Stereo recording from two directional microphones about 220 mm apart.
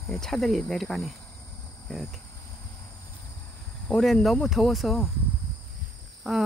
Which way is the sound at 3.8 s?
Centre (ahead or behind).